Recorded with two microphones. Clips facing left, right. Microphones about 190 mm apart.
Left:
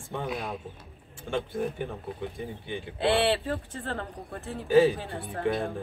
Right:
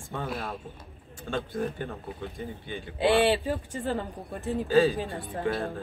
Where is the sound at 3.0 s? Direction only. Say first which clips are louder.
Right 2 dB; 15° right (ahead or behind).